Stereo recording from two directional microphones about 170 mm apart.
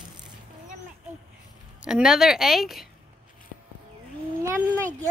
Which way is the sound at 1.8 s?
5° right (ahead or behind).